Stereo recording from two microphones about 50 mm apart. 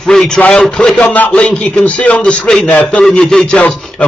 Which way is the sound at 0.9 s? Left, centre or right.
Left.